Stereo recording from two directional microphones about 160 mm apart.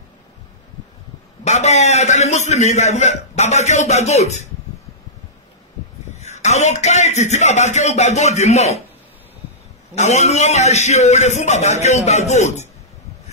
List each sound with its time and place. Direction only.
1.4 s a man's voice: 45° left (ahead or behind)
6.1 s a man's voice: 45° left (ahead or behind)
9.9 s a man's voice: 45° left (ahead or behind)